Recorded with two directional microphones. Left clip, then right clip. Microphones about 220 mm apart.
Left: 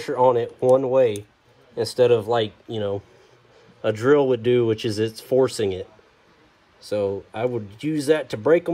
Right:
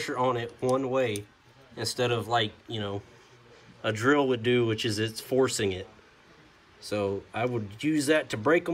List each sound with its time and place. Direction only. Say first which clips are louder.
0.2 s speech: left 11 dB; 30° left (ahead or behind)
6.9 s speech: left 6 dB; 20° left (ahead or behind)